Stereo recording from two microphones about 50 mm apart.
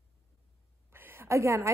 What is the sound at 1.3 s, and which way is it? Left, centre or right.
Speech, right.